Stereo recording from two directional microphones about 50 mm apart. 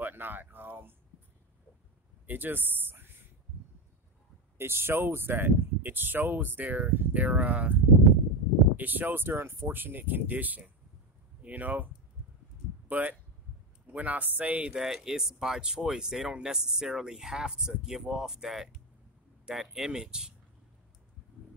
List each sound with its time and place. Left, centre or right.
0.0 s a sound: right
2.2 s speech: right
4.6 s speech: right
15.0 s speech: centre